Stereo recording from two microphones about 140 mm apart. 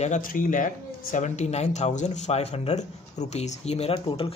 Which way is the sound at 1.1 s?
55° left (ahead or behind).